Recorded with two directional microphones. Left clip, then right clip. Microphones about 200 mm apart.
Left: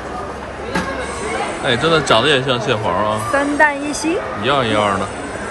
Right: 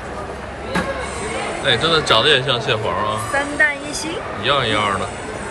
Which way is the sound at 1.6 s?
10° left (ahead or behind).